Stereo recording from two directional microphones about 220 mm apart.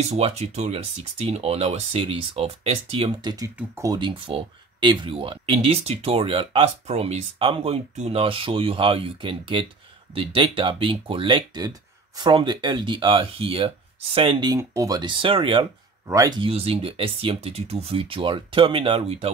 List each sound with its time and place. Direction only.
0.0 s speech: 30° right (ahead or behind)